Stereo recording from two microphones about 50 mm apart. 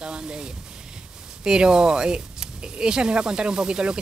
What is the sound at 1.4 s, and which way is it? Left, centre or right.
Speech, centre.